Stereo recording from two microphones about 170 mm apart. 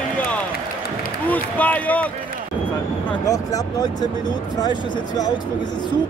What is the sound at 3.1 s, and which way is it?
Speech, 20° left (ahead or behind).